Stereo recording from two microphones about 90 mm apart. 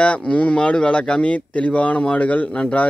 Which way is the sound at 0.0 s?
15° left (ahead or behind).